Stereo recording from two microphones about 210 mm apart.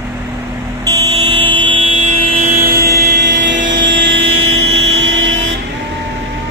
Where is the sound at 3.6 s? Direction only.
60° right (ahead or behind).